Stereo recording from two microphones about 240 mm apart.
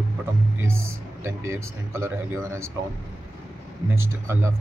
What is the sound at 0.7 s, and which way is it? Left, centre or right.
Speech, centre.